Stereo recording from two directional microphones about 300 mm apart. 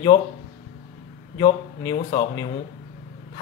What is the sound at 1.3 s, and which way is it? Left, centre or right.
Speech, centre.